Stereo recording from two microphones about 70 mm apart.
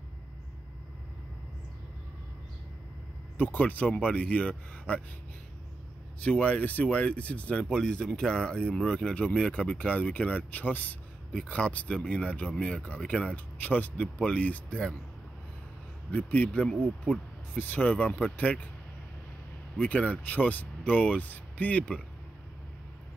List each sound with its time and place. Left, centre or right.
3.3 s speech: left
6.2 s speech: centre
16.1 s speech: left
16.8 s speech: centre
17.6 s speech: left
19.8 s speech: centre